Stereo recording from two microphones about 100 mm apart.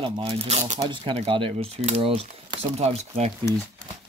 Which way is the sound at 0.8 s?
55° right (ahead or behind).